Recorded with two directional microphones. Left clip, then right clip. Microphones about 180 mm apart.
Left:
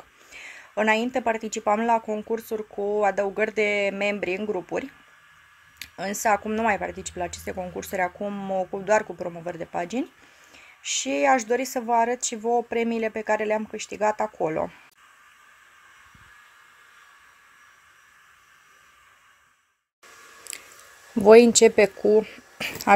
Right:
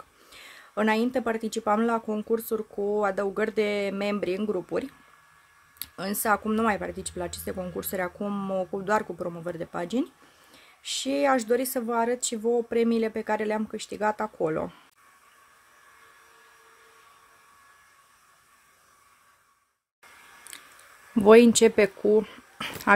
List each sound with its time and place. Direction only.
0.3 s speech: 15° right (ahead or behind)
8.2 s speech: 35° right (ahead or behind)
8.8 s speech: 15° right (ahead or behind)
21.2 s speech: 10° right (ahead or behind)